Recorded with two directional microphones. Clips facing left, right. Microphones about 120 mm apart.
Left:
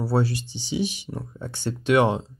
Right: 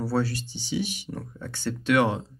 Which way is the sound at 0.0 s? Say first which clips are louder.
Left 2 dB; 15° left (ahead or behind).